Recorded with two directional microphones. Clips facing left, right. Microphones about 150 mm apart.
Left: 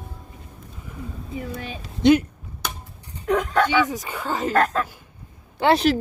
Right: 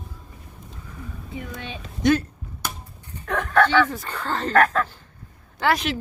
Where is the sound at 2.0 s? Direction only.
15° left (ahead or behind).